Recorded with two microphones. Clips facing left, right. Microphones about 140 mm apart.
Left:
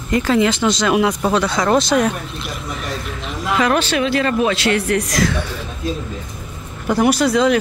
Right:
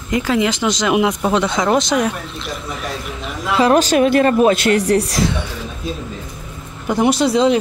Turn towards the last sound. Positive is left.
turn(degrees=-25)  # may be behind; listen again after turning